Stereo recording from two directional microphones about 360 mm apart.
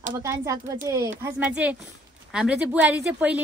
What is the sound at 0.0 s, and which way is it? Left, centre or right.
A woman's voice, centre.